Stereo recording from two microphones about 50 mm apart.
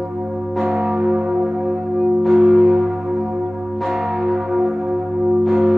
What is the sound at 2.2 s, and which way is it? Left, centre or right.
Music, centre.